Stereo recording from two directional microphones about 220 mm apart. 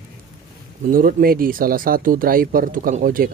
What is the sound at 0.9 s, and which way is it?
A man's voice, 40° right (ahead or behind).